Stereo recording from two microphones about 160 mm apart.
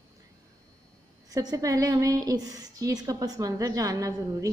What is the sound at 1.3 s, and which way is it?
Speech, 20° right (ahead or behind).